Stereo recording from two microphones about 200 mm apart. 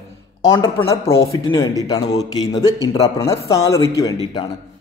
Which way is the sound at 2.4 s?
20° left (ahead or behind).